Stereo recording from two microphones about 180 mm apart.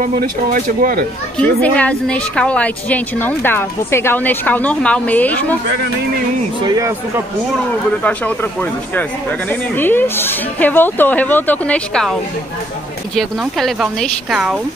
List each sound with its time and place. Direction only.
0.0 s speech: 50° right (ahead or behind)
1.4 s a woman's voice: 5° left (ahead or behind)
6.6 s speech: 15° right (ahead or behind)
8.0 s a woman's voice: 10° left (ahead or behind)
9.5 s a woman's voice: 10° left (ahead or behind)